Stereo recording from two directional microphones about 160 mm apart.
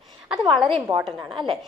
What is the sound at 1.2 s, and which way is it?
Speech, 30° right (ahead or behind).